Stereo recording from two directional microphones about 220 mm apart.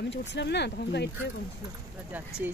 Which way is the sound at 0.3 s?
50° left (ahead or behind).